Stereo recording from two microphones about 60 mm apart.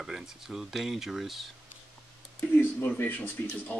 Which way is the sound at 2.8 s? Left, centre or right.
Left.